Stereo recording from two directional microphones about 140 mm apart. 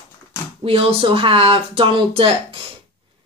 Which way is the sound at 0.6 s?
40° right (ahead or behind).